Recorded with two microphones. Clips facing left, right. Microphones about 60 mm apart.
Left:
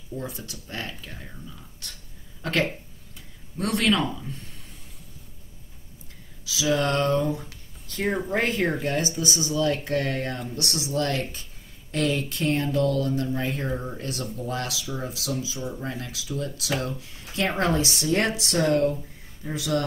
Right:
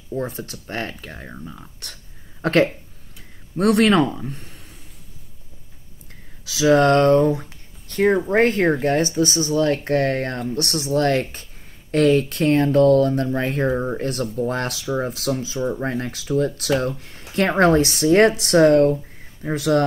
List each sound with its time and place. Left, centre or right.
0.2 s speech: right
2.4 s a man's voice: right
6.4 s speech: right
7.8 s a sound: right
8.3 s speech: right
17.0 s a sound: right
17.6 s speech: right